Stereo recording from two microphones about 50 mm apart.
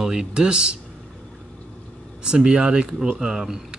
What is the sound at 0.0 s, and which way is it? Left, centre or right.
Speech, centre.